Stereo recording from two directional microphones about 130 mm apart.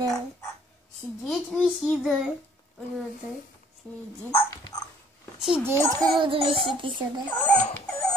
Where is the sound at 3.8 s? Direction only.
10° left (ahead or behind).